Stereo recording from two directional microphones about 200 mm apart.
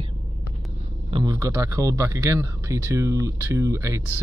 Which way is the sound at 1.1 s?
25° right (ahead or behind).